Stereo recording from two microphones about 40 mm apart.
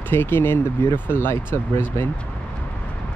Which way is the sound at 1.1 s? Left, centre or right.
Left.